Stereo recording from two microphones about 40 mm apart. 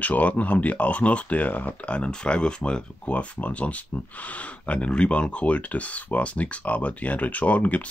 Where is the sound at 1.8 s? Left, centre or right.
Left.